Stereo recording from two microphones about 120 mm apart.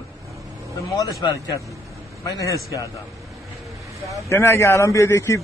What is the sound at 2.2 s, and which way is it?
Speech, 30° left (ahead or behind).